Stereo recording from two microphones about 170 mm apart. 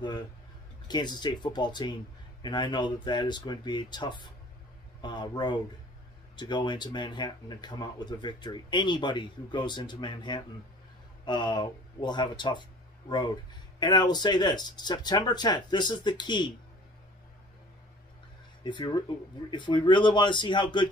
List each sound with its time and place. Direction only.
0.8 s speech: 25° left (ahead or behind)
13.7 s speech: 25° left (ahead or behind)
18.6 s speech: 25° left (ahead or behind)